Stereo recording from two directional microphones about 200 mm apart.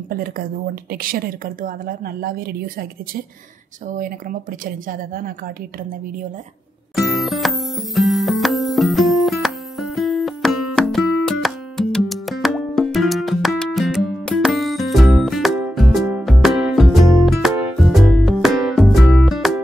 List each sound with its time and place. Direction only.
0.1 s a woman's voice: 45° right (ahead or behind)
3.9 s a woman's voice: 40° right (ahead or behind)
7.0 s music: centre (ahead or behind)